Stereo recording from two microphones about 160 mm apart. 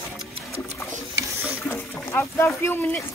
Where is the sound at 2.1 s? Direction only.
15° left (ahead or behind).